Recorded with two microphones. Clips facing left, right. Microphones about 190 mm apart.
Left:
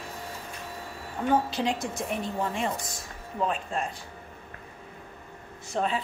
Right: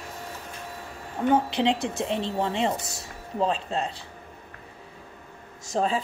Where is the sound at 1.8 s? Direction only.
65° right (ahead or behind).